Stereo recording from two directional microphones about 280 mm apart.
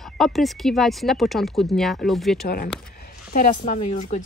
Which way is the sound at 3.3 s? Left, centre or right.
Left.